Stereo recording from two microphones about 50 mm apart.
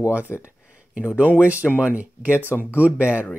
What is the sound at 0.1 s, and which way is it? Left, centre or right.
Speech, right.